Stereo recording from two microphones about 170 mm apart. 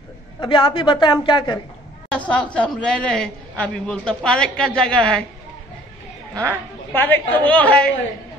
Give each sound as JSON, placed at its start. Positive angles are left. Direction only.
{"t": 0.4, "sound": "a woman's voice", "side_deg": 30}
{"t": 2.1, "sound": "a woman's voice", "side_deg": 5}
{"t": 6.9, "sound": "a woman's voice", "side_deg": 10}